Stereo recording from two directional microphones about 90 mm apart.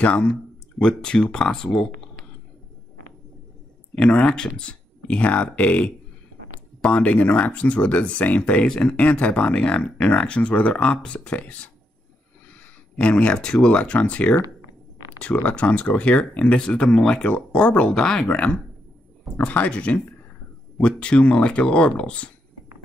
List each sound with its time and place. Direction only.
0.0 s speech: 10° left (ahead or behind)
3.9 s speech: 10° left (ahead or behind)
12.9 s speech: 10° left (ahead or behind)
15.4 s speech: 15° left (ahead or behind)